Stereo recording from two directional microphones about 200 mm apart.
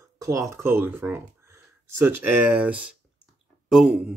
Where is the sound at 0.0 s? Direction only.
15° right (ahead or behind).